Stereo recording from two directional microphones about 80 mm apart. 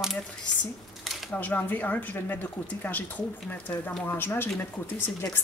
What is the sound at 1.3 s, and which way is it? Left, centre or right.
Speech, left.